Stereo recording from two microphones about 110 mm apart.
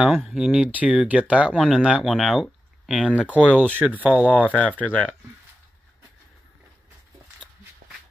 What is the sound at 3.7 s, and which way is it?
Speech, 15° right (ahead or behind).